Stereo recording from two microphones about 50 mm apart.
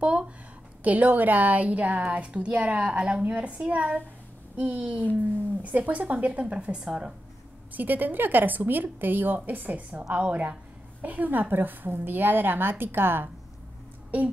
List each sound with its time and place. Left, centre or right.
0.0 s a sound: right
0.8 s a woman's voice: right
7.7 s a woman's voice: right